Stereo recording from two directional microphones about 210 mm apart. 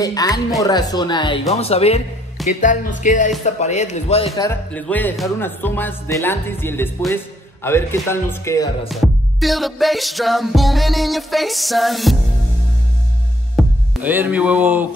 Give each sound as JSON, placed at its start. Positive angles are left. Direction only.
{"t": 0.0, "sound": "speech", "side_deg": 15}
{"t": 4.4, "sound": "speech", "side_deg": 10}
{"t": 8.8, "sound": "music", "side_deg": 0}
{"t": 13.6, "sound": "music", "side_deg": -10}